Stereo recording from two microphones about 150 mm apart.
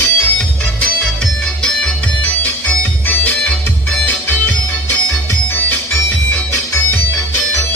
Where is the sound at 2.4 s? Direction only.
10° left (ahead or behind).